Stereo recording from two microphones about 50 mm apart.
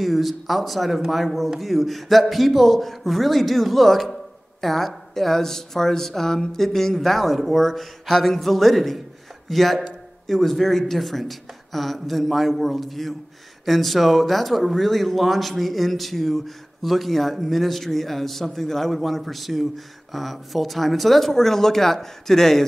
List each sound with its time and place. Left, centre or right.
0.0 s speech: centre